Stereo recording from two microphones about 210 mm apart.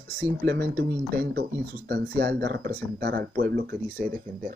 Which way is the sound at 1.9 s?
50° right (ahead or behind).